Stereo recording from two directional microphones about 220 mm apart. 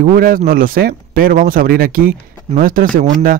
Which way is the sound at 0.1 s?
40° right (ahead or behind).